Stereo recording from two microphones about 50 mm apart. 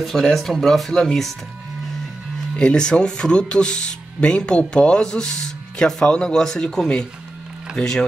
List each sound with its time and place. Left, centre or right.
0.0 s speech: centre
2.5 s speech: centre